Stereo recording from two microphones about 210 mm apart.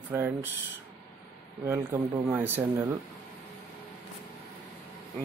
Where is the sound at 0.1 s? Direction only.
10° right (ahead or behind).